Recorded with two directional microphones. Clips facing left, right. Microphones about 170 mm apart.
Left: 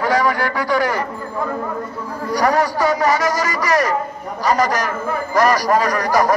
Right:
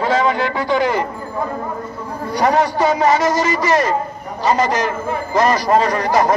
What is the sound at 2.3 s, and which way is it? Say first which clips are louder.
A man's voice: right 1 dB; 25° right (ahead or behind).